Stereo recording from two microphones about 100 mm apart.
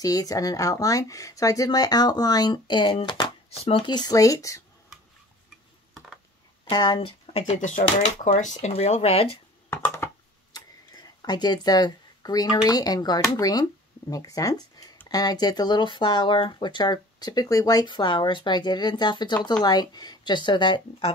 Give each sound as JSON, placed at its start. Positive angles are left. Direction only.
{"t": 0.0, "sound": "speech", "side_deg": 35}
{"t": 6.6, "sound": "speech", "side_deg": 45}
{"t": 7.3, "sound": "speech", "side_deg": 85}
{"t": 9.7, "sound": "a sound", "side_deg": 20}
{"t": 11.2, "sound": "speech", "side_deg": 45}